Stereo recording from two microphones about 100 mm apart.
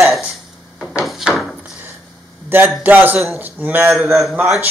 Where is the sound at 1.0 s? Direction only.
5° right (ahead or behind).